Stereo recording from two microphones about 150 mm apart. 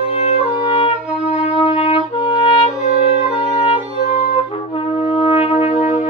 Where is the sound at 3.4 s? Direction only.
40° left (ahead or behind).